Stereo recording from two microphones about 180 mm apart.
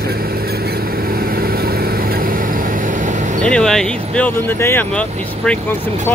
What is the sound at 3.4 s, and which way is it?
Speech, 5° left (ahead or behind).